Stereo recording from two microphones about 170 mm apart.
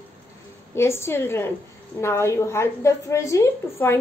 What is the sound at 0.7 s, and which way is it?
A woman's voice, 15° left (ahead or behind).